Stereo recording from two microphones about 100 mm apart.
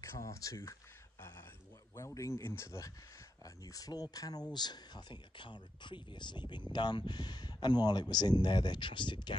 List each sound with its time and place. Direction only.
0.0 s speech: 30° left (ahead or behind)
2.0 s speech: 30° left (ahead or behind); by 9.4 s 50° left (ahead or behind)